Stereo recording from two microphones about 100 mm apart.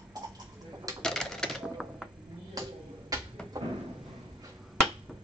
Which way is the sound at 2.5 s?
40° right (ahead or behind).